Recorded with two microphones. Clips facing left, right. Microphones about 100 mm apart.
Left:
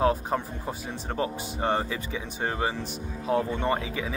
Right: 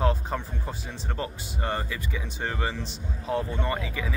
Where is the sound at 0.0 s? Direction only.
15° left (ahead or behind).